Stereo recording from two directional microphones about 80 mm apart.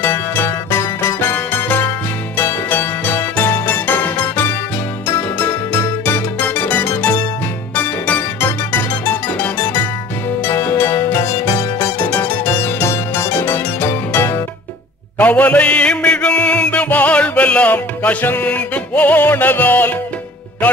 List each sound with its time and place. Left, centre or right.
0.0 s music: left
10.4 s music: left
15.1 s a sound: centre